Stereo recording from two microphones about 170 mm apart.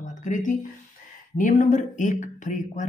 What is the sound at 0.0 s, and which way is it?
Speech, 45° left (ahead or behind).